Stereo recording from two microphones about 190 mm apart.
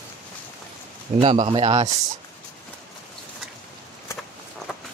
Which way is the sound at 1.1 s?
35° right (ahead or behind).